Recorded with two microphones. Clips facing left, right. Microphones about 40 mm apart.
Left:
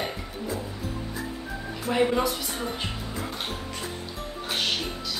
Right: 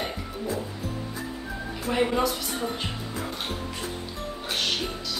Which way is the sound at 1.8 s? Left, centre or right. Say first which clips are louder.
Left 1 dB; centre.